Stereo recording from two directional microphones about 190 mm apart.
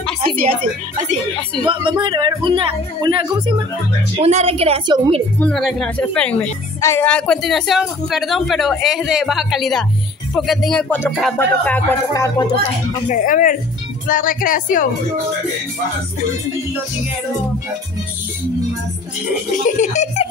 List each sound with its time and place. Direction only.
1.6 s a woman's voice: 25° right (ahead or behind)
5.4 s a woman's voice: centre (ahead or behind)
11.3 s music: 10° left (ahead or behind)
13.1 s speech: 45° left (ahead or behind)
19.5 s speech: 40° left (ahead or behind)